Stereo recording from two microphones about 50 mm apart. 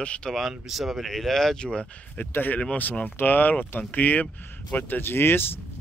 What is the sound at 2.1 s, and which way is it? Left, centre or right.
Speech, left.